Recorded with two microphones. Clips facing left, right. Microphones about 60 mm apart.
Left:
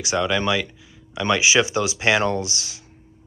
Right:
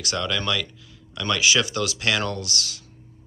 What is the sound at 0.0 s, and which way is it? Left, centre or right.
Speech, centre.